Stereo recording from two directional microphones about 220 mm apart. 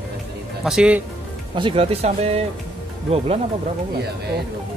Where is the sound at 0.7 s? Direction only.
5° right (ahead or behind).